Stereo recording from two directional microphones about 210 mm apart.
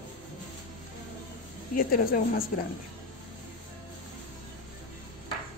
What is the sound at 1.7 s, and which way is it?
Speech, 40° left (ahead or behind).